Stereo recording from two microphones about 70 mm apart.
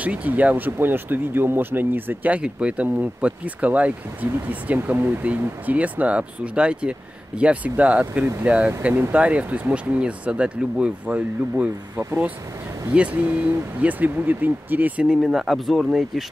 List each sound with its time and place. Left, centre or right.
0.0 s speech: right
12.9 s speech: centre
15.2 s speech: centre